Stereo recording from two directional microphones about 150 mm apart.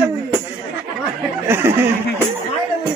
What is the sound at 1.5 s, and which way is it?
Speech, 15° right (ahead or behind).